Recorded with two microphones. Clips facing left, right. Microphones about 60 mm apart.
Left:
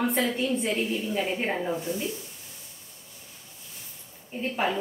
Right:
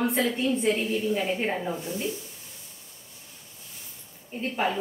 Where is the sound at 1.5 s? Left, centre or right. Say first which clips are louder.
Left 1 dB; centre.